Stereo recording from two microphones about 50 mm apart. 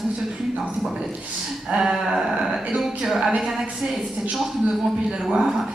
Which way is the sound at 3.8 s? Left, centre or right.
Right.